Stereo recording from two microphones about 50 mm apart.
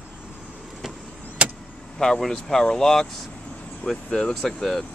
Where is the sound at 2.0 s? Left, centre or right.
Centre.